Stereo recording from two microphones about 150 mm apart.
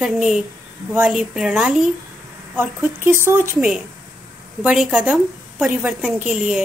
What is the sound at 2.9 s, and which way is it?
Speech, 15° right (ahead or behind).